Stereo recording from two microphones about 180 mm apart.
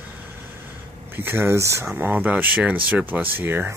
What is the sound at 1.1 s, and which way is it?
Speech, 10° right (ahead or behind).